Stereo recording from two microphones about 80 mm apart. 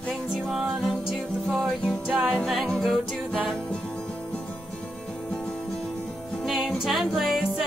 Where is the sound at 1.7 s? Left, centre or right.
Centre.